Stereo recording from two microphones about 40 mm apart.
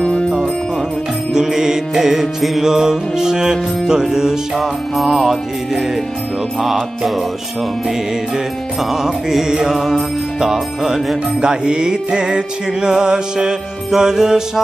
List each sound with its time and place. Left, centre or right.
0.0 s music: left
1.3 s music: centre
4.6 s music: centre
8.9 s music: centre
11.4 s music: right